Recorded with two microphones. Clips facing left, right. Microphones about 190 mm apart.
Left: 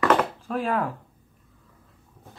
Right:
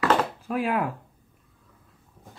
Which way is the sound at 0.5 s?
10° right (ahead or behind).